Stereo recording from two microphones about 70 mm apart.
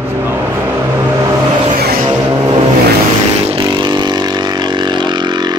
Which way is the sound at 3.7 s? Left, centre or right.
Right.